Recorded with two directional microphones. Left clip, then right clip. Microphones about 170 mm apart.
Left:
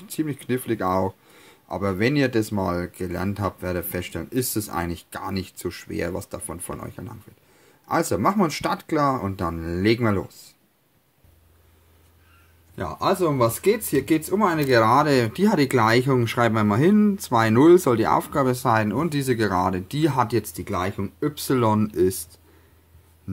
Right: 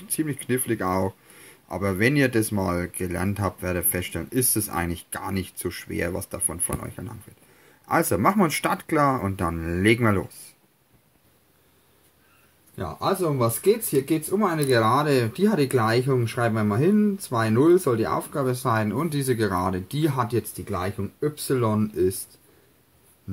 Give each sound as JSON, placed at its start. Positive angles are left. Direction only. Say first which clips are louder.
{"t": 0.1, "sound": "speech", "louder": "even", "side_deg": 10}
{"t": 12.7, "sound": "speech", "louder": "left 3 dB", "side_deg": 35}